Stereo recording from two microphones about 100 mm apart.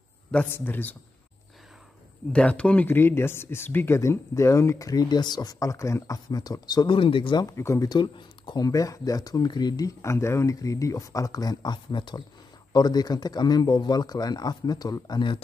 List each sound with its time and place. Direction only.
0.5 s speech: 20° left (ahead or behind)
2.3 s speech: 10° left (ahead or behind); by 7.0 s 40° left (ahead or behind)
7.0 s speech: 60° left (ahead or behind)
7.4 s speech: 30° left (ahead or behind)
7.9 s speech: 45° left (ahead or behind)